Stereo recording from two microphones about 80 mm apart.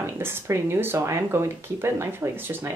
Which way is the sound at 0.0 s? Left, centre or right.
Right.